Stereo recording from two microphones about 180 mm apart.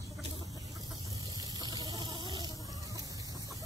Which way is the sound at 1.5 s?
20° right (ahead or behind).